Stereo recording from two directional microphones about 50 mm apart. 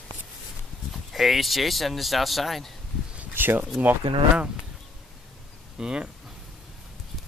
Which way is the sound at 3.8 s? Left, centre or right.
Right.